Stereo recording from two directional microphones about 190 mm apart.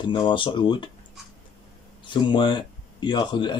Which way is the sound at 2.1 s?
25° left (ahead or behind).